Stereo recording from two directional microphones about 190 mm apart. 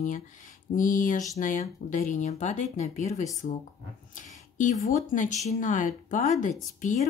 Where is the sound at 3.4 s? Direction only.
45° left (ahead or behind).